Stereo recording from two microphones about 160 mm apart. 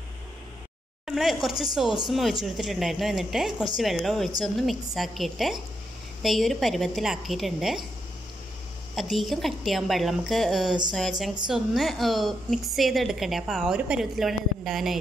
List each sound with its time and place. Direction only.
1.0 s a woman's voice: centre (ahead or behind)
9.1 s a woman's voice: centre (ahead or behind)